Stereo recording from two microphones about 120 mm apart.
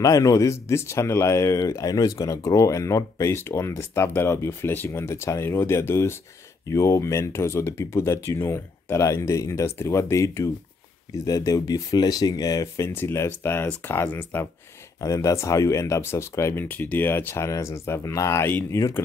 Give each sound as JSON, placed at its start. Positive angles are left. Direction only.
{"t": 0.0, "sound": "speech", "side_deg": 30}
{"t": 18.8, "sound": "speech", "side_deg": 25}